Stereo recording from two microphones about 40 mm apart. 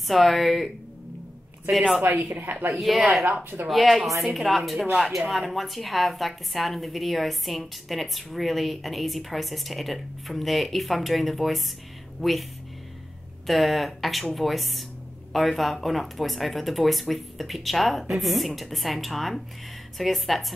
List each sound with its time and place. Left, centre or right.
0.0 s a woman's voice: centre
2.5 s speech: right
2.8 s a woman's voice: centre
13.5 s a woman's voice: centre